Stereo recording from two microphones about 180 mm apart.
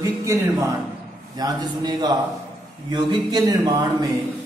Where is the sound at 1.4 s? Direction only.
20° right (ahead or behind).